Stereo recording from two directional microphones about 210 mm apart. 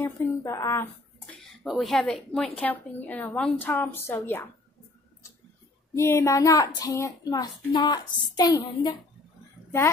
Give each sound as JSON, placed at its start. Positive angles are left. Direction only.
{"t": 0.0, "sound": "speech", "side_deg": 10}
{"t": 5.9, "sound": "speech", "side_deg": 15}